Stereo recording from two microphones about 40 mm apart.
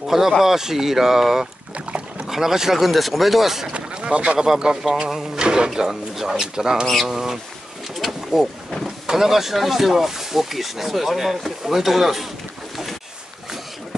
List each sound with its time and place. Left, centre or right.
0.0 s speech: centre
3.7 s boat: right
4.6 s speech: right
5.1 s a sound: centre
5.7 s speech: centre
7.9 s pigeon: centre
8.8 s speech: centre